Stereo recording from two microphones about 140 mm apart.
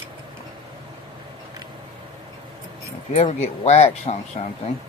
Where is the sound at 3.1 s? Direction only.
50° left (ahead or behind).